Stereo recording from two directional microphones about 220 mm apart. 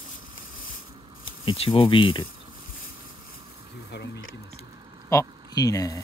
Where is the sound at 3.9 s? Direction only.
55° left (ahead or behind).